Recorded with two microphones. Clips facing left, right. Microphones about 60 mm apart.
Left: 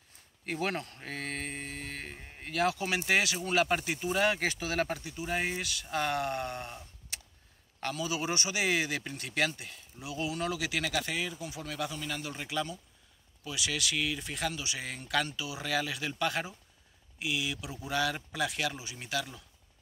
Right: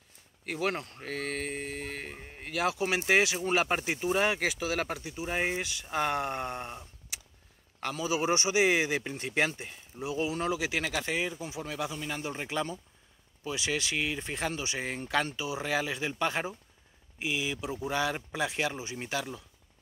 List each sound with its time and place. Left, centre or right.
0.5 s speech: centre
1.0 s speech: centre
4.4 s speech: centre; by 19.4 s right